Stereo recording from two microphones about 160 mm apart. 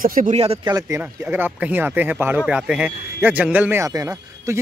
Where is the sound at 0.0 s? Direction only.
55° right (ahead or behind).